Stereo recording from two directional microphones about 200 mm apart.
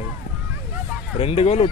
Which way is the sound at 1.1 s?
30° left (ahead or behind).